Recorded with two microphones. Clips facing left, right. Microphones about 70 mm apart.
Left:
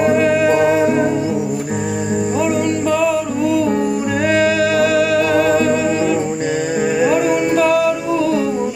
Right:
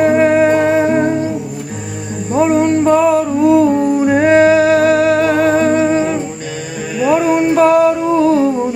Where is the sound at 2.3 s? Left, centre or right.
Right.